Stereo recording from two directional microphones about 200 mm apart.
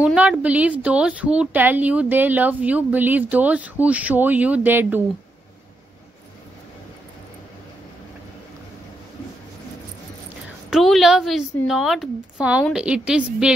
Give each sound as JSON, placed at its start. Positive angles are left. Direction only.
{"t": 0.0, "sound": "a woman's voice", "side_deg": -5}
{"t": 10.7, "sound": "a woman's voice", "side_deg": 0}